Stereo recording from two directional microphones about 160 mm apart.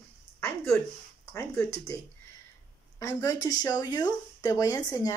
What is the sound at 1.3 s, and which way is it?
Speech, 20° left (ahead or behind).